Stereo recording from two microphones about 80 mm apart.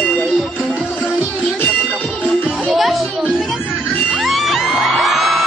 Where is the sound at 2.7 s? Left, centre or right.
Centre.